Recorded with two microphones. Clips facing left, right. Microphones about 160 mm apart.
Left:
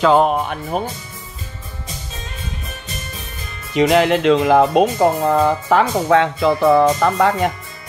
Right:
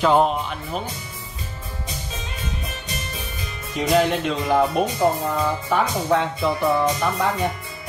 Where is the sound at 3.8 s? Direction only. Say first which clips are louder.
Left 5 dB; 90° left.